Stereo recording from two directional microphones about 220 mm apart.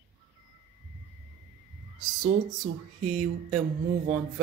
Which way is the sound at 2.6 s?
35° right (ahead or behind).